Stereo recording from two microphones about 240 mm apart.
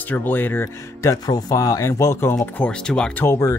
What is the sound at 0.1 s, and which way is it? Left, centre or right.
Speech, centre.